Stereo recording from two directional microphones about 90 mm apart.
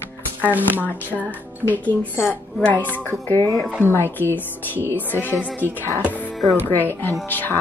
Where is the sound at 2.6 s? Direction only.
20° left (ahead or behind).